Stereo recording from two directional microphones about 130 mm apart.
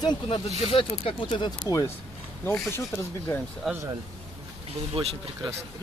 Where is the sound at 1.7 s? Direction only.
25° left (ahead or behind).